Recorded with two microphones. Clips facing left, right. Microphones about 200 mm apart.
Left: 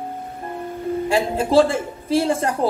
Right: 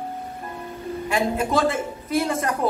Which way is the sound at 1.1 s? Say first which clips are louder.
Left 5 dB; 30° left (ahead or behind).